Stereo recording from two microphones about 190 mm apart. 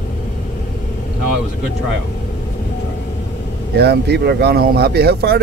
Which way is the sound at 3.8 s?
60° right (ahead or behind).